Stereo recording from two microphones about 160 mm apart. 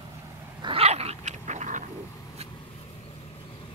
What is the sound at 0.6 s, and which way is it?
Dog, 35° right (ahead or behind).